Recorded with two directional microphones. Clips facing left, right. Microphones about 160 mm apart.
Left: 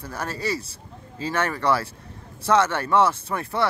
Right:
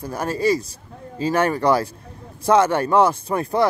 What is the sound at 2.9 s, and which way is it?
Speech, 15° right (ahead or behind).